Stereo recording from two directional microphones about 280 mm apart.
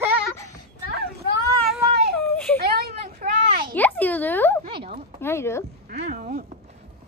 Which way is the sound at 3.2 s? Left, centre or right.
Right.